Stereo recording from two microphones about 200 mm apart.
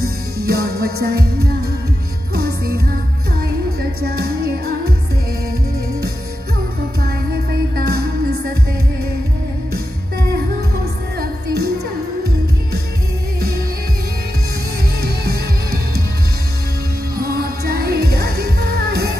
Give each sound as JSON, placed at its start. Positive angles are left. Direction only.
{"t": 0.0, "sound": "music", "side_deg": -50}
{"t": 4.0, "sound": "music", "side_deg": -50}
{"t": 7.7, "sound": "music", "side_deg": -50}
{"t": 11.1, "sound": "music", "side_deg": -55}
{"t": 15.0, "sound": "music", "side_deg": -50}
{"t": 17.3, "sound": "music", "side_deg": -50}